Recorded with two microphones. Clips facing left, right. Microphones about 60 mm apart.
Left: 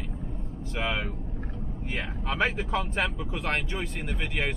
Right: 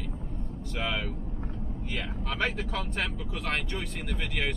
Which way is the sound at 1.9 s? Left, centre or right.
Left.